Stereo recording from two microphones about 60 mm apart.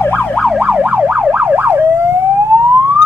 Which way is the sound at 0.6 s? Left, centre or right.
Right.